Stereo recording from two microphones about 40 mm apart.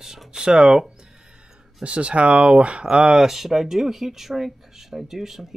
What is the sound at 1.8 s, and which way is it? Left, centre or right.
Speech, right.